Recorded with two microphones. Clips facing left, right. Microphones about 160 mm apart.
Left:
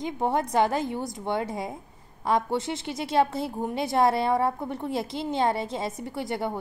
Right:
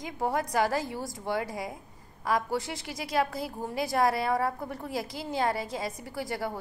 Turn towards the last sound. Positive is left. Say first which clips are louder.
# left 4 dB
turn(degrees=25)  # may be behind; listen again after turning